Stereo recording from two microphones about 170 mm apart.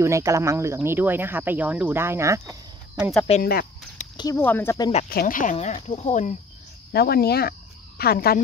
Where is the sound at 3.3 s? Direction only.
35° left (ahead or behind).